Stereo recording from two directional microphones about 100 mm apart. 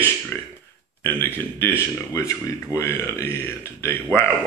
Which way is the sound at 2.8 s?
25° left (ahead or behind).